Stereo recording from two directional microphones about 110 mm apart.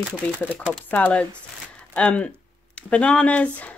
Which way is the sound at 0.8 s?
15° left (ahead or behind).